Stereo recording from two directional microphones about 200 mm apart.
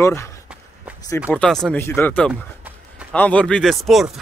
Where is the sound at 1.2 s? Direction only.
5° left (ahead or behind).